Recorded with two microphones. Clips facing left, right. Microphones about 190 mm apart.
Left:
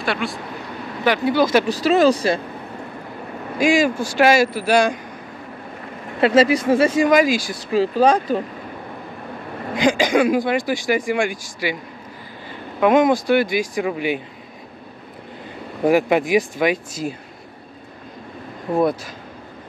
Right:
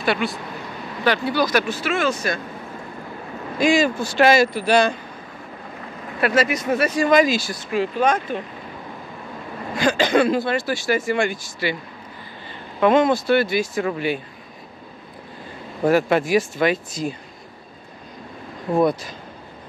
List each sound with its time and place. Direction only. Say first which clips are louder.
0.0 s speech: right 2 dB; centre (ahead or behind)
1.0 s speech: left 3 dB; 15° left (ahead or behind); by 2.4 s 30° left (ahead or behind)
3.5 s speech: left 1 dB; 10° left (ahead or behind)
6.2 s speech: left 5 dB; 30° left (ahead or behind)
7.1 s speech: left 1 dB; 10° left (ahead or behind)
7.7 s speech: left 4 dB; 35° left (ahead or behind)
9.8 s speech: left 1 dB; 15° left (ahead or behind)
12.8 s speech: left 1 dB; 10° left (ahead or behind)
15.8 s speech: left 1 dB; 15° left (ahead or behind)
18.8 s speech: even; 5° left (ahead or behind)